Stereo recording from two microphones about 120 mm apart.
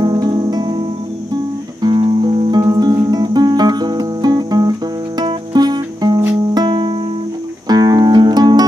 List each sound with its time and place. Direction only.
0.0 s music: 35° right (ahead or behind)